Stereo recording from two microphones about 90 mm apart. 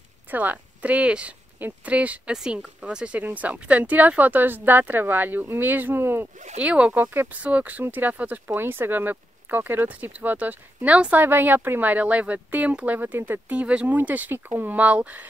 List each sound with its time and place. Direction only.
0.3 s speech: 20° right (ahead or behind)
6.6 s speech: 10° right (ahead or behind)